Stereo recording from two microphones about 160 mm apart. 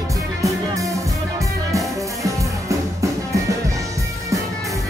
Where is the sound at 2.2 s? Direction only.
20° right (ahead or behind).